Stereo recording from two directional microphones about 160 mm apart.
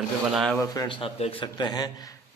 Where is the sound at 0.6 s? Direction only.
20° left (ahead or behind).